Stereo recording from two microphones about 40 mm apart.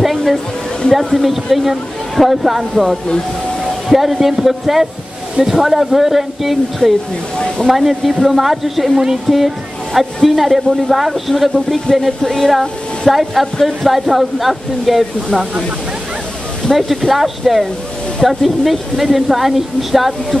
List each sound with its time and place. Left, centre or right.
0.0 s a sound: centre
0.9 s speech: centre
7.3 s a sound: centre
7.7 s speech: centre
8.9 s a sound: centre
9.9 s speech: centre
13.1 s speech: centre
16.6 s speech: centre
17.1 s speech: centre